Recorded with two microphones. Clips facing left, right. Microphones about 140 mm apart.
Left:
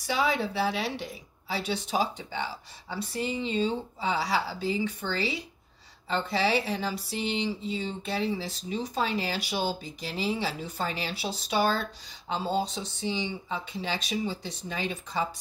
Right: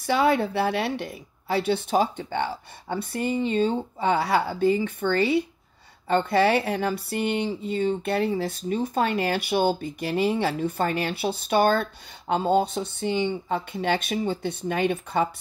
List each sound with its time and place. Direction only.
0.0 s speech: 55° right (ahead or behind)